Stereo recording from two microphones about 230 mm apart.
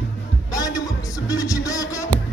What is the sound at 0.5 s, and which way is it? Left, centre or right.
Music, centre.